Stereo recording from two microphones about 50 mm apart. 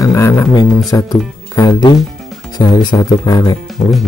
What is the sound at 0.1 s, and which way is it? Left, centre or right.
Speech, left.